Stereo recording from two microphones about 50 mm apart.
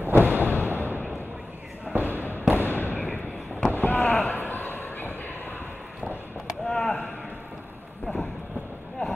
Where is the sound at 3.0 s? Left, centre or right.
Left.